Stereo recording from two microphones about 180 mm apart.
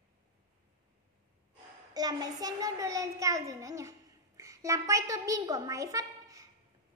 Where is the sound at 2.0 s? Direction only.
20° right (ahead or behind).